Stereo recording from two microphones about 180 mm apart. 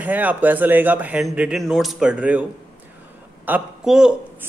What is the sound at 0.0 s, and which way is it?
Speech, 10° right (ahead or behind).